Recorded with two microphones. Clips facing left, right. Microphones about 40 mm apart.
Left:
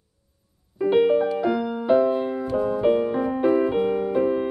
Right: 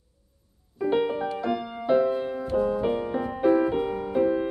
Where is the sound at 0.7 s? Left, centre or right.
Centre.